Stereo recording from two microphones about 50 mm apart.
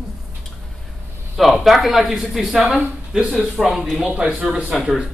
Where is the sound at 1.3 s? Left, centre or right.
Centre.